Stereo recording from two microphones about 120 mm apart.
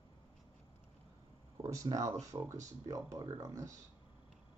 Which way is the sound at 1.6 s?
30° right (ahead or behind).